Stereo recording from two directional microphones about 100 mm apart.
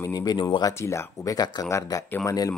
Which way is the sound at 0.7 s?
30° left (ahead or behind).